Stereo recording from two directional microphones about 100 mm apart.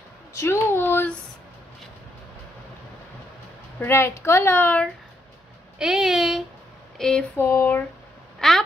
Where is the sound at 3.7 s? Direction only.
25° left (ahead or behind).